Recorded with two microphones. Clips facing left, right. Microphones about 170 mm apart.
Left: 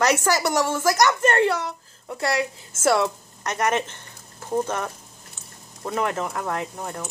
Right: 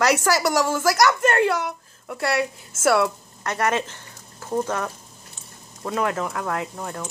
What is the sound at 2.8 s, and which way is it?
A woman's voice, 25° left (ahead or behind).